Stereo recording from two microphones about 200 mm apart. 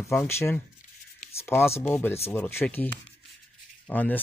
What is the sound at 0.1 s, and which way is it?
Speech, 10° left (ahead or behind).